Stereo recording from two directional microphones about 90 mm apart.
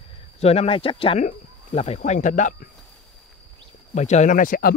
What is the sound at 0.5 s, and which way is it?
Speech, 90° left.